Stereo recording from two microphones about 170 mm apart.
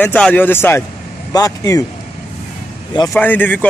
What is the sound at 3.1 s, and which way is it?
Speech, 10° left (ahead or behind).